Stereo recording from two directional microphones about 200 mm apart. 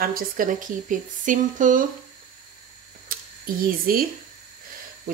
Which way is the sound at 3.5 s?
45° right (ahead or behind).